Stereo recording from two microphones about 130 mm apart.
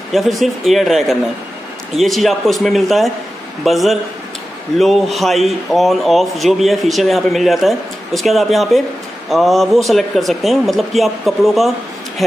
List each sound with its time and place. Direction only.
0.1 s speech: centre (ahead or behind)